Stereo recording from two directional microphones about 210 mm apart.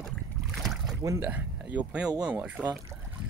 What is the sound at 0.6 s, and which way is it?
Boat, centre (ahead or behind).